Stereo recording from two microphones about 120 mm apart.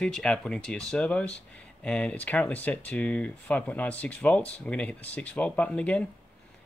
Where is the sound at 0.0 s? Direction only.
5° left (ahead or behind).